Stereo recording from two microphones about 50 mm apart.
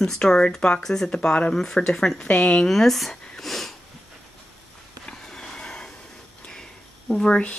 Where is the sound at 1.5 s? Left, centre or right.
Centre.